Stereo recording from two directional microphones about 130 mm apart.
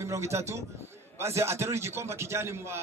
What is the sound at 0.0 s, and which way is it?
A man's voice, 20° right (ahead or behind).